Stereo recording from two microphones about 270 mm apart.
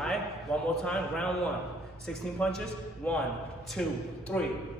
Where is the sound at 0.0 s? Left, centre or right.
Centre.